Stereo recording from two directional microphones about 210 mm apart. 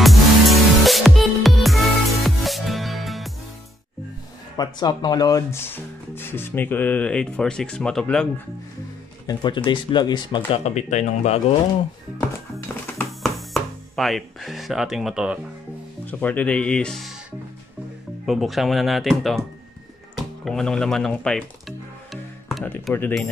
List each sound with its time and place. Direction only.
0.0 s music: centre (ahead or behind)
4.6 s speech: 20° left (ahead or behind); by 8.3 s 5° left (ahead or behind)
9.3 s speech: 20° left (ahead or behind)
12.5 s music: 5° left (ahead or behind)
16.1 s speech: 10° left (ahead or behind)
18.2 s speech: centre (ahead or behind)
20.4 s speech: centre (ahead or behind)